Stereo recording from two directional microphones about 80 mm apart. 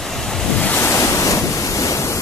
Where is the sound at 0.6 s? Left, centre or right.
Centre.